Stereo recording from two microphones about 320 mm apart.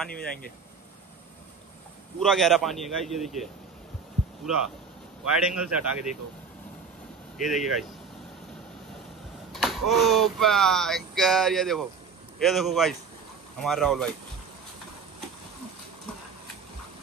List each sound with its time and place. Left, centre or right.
2.1 s speech: centre
5.2 s speech: centre
7.3 s speech: centre
9.5 s speech: centre